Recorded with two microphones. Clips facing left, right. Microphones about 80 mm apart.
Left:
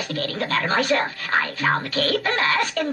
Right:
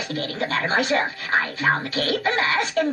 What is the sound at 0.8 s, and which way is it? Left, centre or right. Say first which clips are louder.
Speech: left 1 dB; left.